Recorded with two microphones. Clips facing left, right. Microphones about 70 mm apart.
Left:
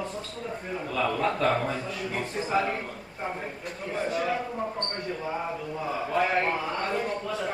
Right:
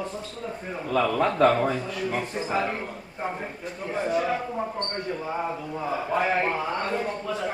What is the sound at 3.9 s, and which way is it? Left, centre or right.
A man's voice, centre.